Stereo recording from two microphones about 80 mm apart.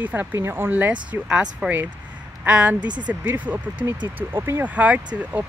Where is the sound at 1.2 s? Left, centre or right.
Centre.